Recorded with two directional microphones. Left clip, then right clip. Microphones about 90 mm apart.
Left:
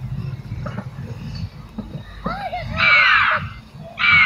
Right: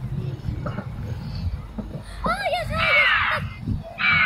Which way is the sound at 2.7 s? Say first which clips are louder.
Left 6 dB; 55° left (ahead or behind).